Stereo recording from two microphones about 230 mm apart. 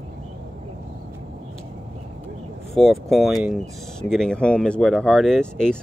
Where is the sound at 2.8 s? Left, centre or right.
Centre.